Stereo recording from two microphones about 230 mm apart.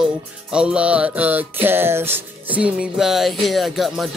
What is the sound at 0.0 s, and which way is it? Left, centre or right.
Music, centre.